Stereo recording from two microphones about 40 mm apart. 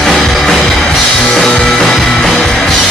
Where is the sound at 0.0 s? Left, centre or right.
Centre.